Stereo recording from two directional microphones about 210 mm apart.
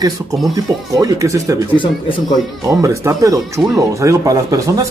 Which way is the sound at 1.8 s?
25° left (ahead or behind).